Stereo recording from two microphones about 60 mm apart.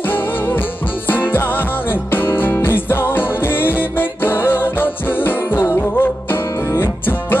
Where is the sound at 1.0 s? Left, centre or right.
Left.